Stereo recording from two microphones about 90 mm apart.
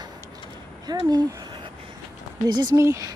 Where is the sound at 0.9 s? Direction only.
50° right (ahead or behind).